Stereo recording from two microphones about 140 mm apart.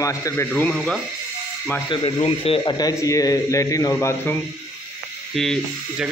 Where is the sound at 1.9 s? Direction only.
35° left (ahead or behind).